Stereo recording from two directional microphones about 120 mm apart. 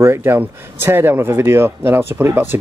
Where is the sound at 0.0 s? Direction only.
20° right (ahead or behind).